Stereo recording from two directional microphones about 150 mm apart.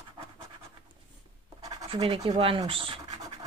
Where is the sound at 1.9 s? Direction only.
35° right (ahead or behind).